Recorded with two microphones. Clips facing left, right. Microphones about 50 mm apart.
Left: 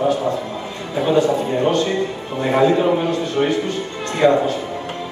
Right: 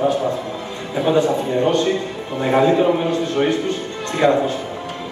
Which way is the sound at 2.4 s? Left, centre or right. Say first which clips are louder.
Even; centre.